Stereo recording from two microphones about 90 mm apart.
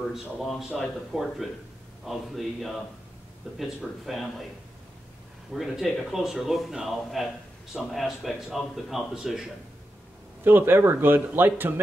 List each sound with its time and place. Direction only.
0.1 s a man's voice: centre (ahead or behind)
5.5 s a man's voice: centre (ahead or behind)
10.4 s speech: 25° right (ahead or behind)